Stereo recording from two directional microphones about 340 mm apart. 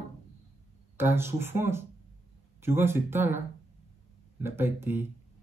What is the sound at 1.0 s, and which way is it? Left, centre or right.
Speech, centre.